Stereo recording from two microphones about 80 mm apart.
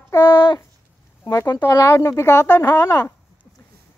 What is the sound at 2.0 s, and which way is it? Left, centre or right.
Speech, left.